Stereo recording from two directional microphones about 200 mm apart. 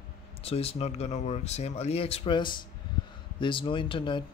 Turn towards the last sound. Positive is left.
turn(degrees=25)  # may be behind; listen again after turning